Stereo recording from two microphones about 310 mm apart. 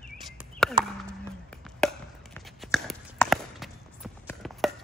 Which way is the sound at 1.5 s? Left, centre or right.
Centre.